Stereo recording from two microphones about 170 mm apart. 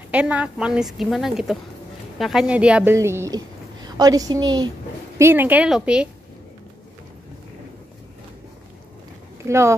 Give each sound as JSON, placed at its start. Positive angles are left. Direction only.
{"t": 0.1, "sound": "a woman's voice", "side_deg": -5}
{"t": 5.2, "sound": "a woman's voice", "side_deg": -10}
{"t": 9.4, "sound": "a woman's voice", "side_deg": -15}